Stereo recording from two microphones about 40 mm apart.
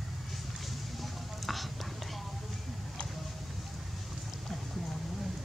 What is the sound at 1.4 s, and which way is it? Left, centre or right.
Whispering, centre.